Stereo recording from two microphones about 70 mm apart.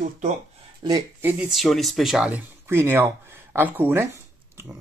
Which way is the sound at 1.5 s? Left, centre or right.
Centre.